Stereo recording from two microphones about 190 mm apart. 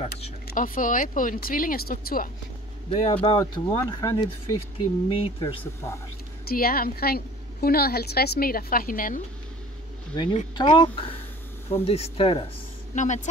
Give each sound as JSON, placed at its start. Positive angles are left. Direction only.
{"t": 0.5, "sound": "a woman's voice", "side_deg": 45}
{"t": 2.9, "sound": "speech", "side_deg": 30}
{"t": 5.1, "sound": "speech", "side_deg": 30}
{"t": 6.5, "sound": "a woman's voice", "side_deg": 50}
{"t": 10.1, "sound": "speech", "side_deg": 25}
{"t": 12.9, "sound": "speech", "side_deg": 40}